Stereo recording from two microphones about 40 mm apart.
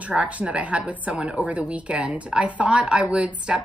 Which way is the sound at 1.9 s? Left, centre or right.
Right.